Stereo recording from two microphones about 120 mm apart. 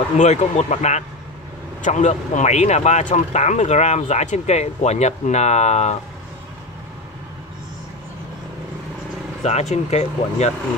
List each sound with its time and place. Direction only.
0.2 s speech: 70° left (ahead or behind)
9.4 s speech: 65° left (ahead or behind)